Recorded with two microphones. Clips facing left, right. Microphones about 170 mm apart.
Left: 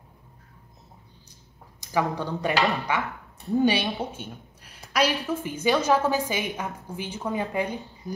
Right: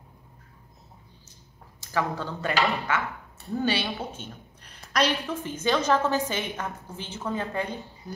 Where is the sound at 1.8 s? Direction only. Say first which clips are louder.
Left 2 dB; 15° left (ahead or behind).